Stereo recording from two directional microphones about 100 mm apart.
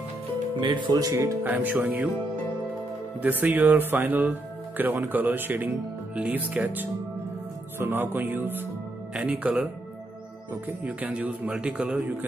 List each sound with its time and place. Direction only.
0.6 s speech: 55° right (ahead or behind)
1.1 s music: 30° right (ahead or behind)
1.4 s speech: 20° right (ahead or behind)
3.2 s speech: 15° right (ahead or behind)
7.8 s music: 20° right (ahead or behind)
9.1 s speech: 10° right (ahead or behind)
10.8 s speech: 15° right (ahead or behind)